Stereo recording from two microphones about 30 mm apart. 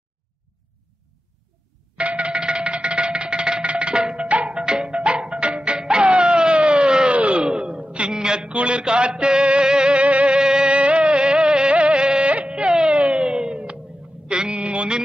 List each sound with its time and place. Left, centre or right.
2.0 s music: right
4.2 s music: right
4.6 s music: right
4.9 s music: right
5.8 s music: right
6.9 s a sound: right
8.1 s a sound: right
9.9 s music: right
10.3 s music: right
10.7 s music: right
12.4 s a sound: right
14.2 s a sound: right